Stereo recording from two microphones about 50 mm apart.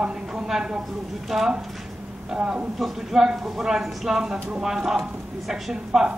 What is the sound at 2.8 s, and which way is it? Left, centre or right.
A man's voice, centre.